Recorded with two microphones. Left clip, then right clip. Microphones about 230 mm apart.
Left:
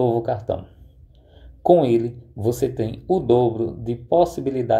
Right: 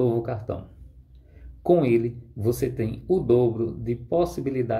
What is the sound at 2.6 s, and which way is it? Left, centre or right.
Speech, centre.